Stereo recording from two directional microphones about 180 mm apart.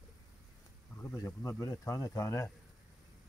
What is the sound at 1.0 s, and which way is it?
Speech, 15° left (ahead or behind).